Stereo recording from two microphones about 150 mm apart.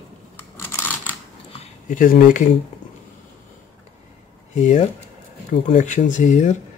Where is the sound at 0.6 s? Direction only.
15° left (ahead or behind).